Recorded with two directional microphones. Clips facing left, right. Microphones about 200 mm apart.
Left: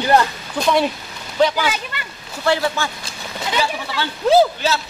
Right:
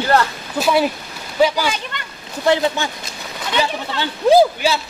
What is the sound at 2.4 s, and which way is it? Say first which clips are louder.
Speech: right 2 dB; 20° right (ahead or behind).